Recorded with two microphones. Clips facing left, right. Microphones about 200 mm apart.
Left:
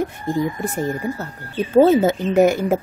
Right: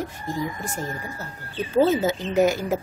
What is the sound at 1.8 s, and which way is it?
A woman's voice, 55° left (ahead or behind).